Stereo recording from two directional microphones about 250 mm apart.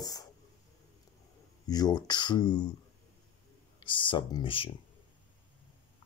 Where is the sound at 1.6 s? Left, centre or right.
Centre.